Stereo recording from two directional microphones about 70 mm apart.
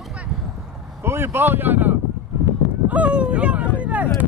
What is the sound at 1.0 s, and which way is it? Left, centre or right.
Speech, right.